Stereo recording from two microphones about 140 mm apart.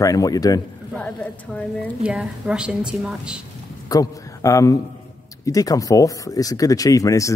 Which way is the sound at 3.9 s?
25° left (ahead or behind).